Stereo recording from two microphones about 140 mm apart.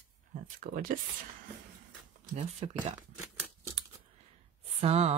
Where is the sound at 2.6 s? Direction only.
45° right (ahead or behind).